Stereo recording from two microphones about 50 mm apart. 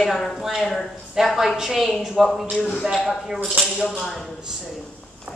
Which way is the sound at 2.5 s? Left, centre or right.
Centre.